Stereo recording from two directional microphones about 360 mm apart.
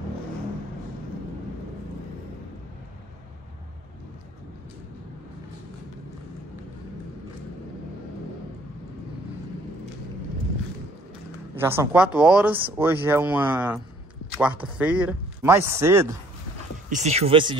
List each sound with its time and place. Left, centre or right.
11.5 s speech: centre
14.8 s speech: centre
16.9 s speech: centre